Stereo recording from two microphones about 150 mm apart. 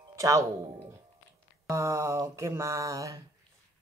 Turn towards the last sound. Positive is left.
turn(degrees=-20)  # may be behind; listen again after turning